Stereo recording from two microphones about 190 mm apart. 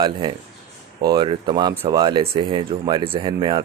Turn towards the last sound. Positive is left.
turn(degrees=-25)  # may be behind; listen again after turning